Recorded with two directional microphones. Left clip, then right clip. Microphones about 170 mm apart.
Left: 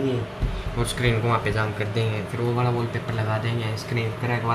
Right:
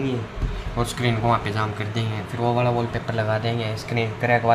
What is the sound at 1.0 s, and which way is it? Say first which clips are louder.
Speech: right 1 dB; 20° right (ahead or behind).